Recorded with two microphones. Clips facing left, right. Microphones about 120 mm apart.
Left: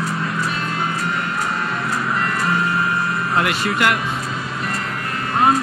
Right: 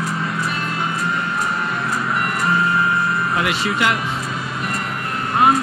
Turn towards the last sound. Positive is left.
turn(degrees=50)  # may be behind; listen again after turning